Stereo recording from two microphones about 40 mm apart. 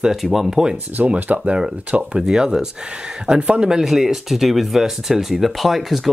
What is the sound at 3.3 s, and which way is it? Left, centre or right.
Speech, right.